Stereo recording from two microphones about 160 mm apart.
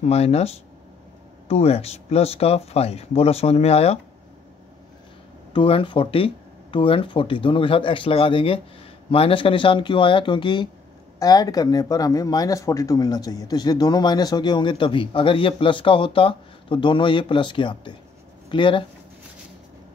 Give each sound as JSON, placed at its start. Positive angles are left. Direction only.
{"t": 0.0, "sound": "speech", "side_deg": 40}
{"t": 5.5, "sound": "speech", "side_deg": 35}